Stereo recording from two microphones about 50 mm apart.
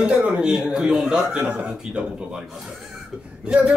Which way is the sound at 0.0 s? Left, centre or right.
Right.